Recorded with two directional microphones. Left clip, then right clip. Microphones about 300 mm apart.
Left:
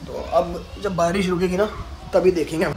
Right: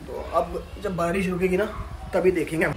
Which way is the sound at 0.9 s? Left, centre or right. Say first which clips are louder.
Left 5 dB; centre.